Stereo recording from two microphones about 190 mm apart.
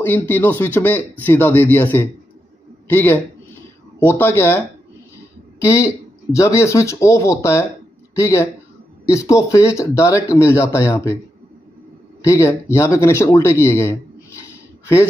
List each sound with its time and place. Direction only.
0.0 s a man's voice: 10° left (ahead or behind)
5.6 s speech: 15° left (ahead or behind)
12.3 s speech: 15° left (ahead or behind)